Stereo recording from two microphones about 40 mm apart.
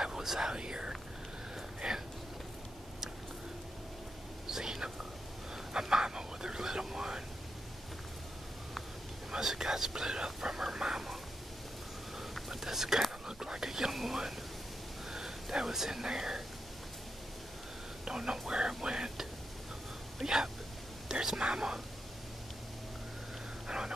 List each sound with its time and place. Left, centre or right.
0.0 s whispering: centre
1.8 s a sound: centre
4.5 s whispering: centre
9.3 s whispering: centre
12.2 s whispering: centre
15.0 s a sound: centre
18.0 s whispering: centre
18.5 s a sound: centre
21.1 s whispering: centre